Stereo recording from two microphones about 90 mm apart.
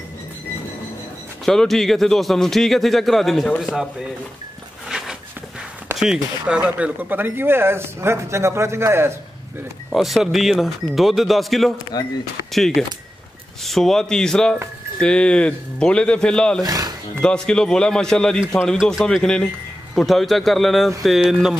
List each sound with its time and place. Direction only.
1.4 s a man's voice: 5° left (ahead or behind)
4.8 s a sound: 5° right (ahead or behind)
5.9 s speech: 10° right (ahead or behind); by 9.1 s 30° right (ahead or behind)
9.9 s a man's voice: centre (ahead or behind)
11.9 s speech: 50° left (ahead or behind)
12.5 s a man's voice: centre (ahead or behind)
16.6 s a sound: 45° right (ahead or behind)
17.2 s a man's voice: 10° left (ahead or behind)